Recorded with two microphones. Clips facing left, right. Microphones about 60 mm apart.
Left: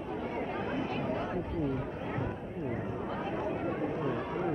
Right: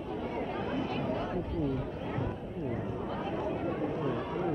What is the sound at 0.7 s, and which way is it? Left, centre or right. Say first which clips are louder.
Chatter: right 1 dB; left.